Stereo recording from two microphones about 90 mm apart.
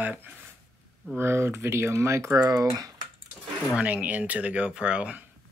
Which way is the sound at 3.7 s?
15° right (ahead or behind).